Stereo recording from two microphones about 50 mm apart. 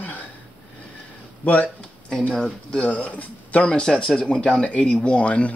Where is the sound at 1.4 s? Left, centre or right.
Left.